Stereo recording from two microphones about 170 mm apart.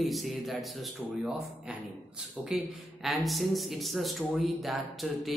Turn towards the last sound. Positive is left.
turn(degrees=0)  # may be behind; listen again after turning